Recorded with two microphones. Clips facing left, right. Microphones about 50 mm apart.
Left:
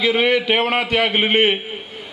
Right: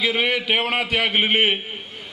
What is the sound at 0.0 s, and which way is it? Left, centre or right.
A man's voice, centre.